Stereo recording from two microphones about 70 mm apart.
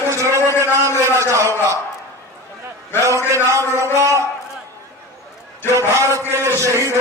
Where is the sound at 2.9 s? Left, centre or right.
Left.